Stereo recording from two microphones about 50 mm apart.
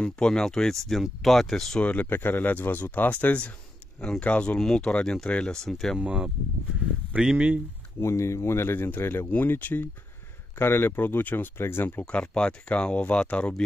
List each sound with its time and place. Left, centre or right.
0.0 s speech: centre
1.8 s speech: left
2.0 s speech: left
4.0 s speech: left
5.9 s speech: centre
7.3 s speech: right
8.0 s speech: left
9.4 s speech: left
10.6 s speech: left
12.1 s speech: left